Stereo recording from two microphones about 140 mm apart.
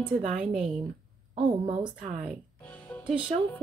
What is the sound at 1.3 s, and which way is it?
Speech, 45° right (ahead or behind).